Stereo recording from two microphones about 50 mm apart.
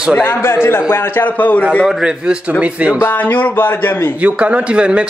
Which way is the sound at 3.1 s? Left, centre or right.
Left.